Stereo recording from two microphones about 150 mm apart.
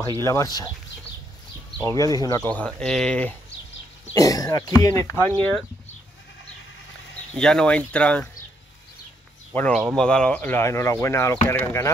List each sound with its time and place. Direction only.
0.2 s speech: 20° left (ahead or behind)
1.9 s speech: 20° left (ahead or behind)
2.4 s speech: 10° left (ahead or behind)
4.1 s speech: 20° left (ahead or behind)
7.3 s speech: 5° left (ahead or behind)
9.5 s speech: 5° left (ahead or behind)